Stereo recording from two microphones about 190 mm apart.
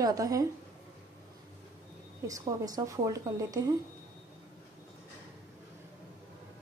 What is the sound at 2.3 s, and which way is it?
Speech, 20° right (ahead or behind).